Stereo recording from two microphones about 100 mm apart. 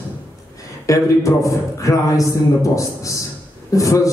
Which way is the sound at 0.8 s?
35° left (ahead or behind).